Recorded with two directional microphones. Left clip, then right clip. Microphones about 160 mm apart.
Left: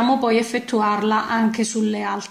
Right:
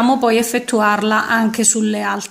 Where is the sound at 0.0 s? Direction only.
40° right (ahead or behind).